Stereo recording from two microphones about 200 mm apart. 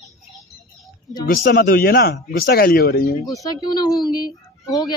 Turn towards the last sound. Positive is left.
turn(degrees=20)  # may be behind; listen again after turning